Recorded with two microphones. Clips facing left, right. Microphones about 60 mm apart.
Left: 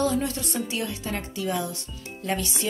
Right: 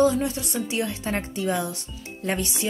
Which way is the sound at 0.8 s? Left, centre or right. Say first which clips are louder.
Right 3 dB; right.